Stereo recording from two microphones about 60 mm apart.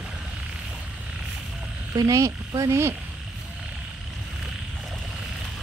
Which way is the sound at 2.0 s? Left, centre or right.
Right.